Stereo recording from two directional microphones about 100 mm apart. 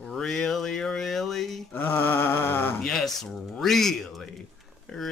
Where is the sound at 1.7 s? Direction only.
20° left (ahead or behind).